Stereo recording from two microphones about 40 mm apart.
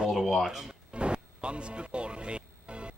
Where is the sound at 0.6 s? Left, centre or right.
Right.